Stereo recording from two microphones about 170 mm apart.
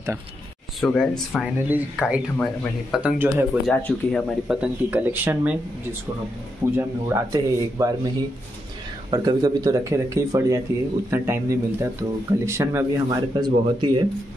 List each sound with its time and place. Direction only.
0.7 s speech: 5° left (ahead or behind)
2.3 s speech: 10° left (ahead or behind)
2.9 s speech: 5° right (ahead or behind)
3.6 s speech: 5° left (ahead or behind)
6.8 s speech: 15° right (ahead or behind)
9.1 s speech: 25° right (ahead or behind)